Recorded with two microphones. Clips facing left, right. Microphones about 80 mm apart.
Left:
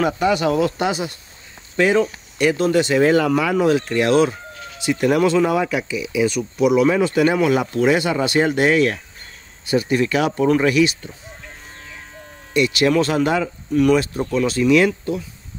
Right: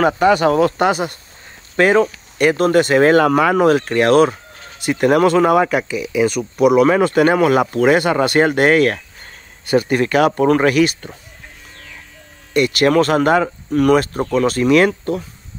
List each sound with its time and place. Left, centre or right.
0.0 s speech: right
12.5 s speech: right